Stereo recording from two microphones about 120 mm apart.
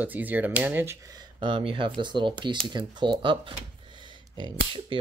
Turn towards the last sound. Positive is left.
turn(degrees=-35)  # may be behind; listen again after turning